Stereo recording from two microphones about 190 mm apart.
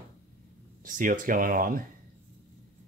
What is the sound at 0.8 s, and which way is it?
Speech, 45° right (ahead or behind).